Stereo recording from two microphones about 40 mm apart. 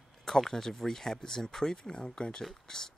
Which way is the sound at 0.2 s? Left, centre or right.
Centre.